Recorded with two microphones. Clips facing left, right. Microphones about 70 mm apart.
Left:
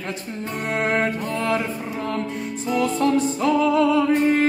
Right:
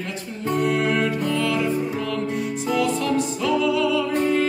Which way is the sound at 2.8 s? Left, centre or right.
Left.